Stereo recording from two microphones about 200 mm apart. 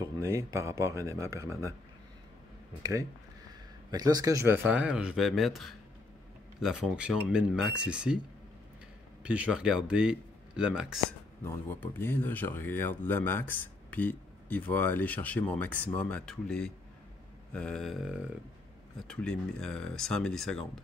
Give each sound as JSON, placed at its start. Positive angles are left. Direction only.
{"t": 0.0, "sound": "speech", "side_deg": -15}
{"t": 2.8, "sound": "speech", "side_deg": -15}
{"t": 9.2, "sound": "speech", "side_deg": -5}
{"t": 11.4, "sound": "speech", "side_deg": 10}
{"t": 18.9, "sound": "speech", "side_deg": 5}